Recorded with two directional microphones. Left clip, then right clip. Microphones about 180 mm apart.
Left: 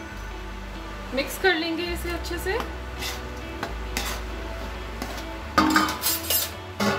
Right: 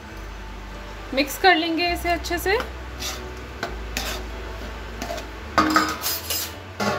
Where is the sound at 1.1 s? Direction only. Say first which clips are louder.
Right 5 dB; 40° right (ahead or behind).